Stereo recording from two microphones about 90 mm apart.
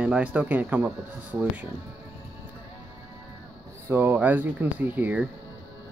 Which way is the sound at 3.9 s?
20° right (ahead or behind).